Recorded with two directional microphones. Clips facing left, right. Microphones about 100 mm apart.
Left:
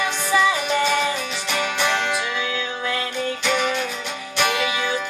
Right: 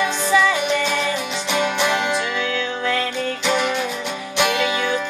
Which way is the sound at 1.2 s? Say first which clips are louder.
Right 4 dB; 20° right (ahead or behind).